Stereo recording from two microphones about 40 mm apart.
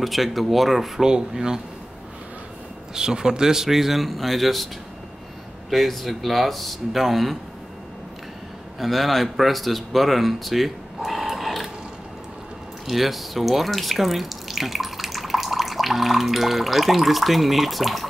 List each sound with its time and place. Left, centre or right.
0.0 s speech: centre
1.0 s speech: centre
2.9 s speech: centre
5.7 s speech: centre
8.7 s speech: centre
11.1 s sewing machine: centre
12.8 s speech: centre